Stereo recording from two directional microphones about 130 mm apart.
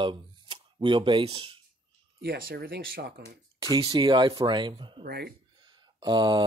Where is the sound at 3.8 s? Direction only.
40° right (ahead or behind).